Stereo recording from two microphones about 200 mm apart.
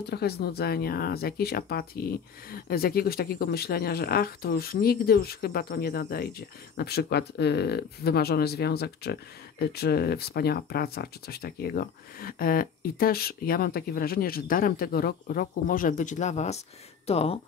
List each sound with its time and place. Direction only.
0.1 s speech: 55° left (ahead or behind); by 17.4 s 30° left (ahead or behind)